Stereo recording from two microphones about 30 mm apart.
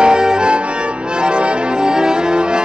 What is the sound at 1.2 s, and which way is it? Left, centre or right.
Music, right.